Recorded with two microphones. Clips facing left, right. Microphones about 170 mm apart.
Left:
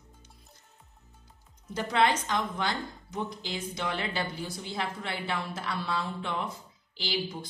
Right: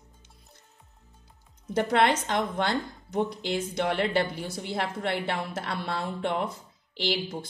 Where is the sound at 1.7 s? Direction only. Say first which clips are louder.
Right 3 dB; 60° right (ahead or behind).